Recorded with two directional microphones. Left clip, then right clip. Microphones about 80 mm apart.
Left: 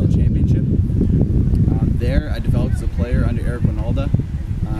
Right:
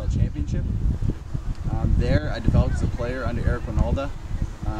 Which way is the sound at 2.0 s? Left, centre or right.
Centre.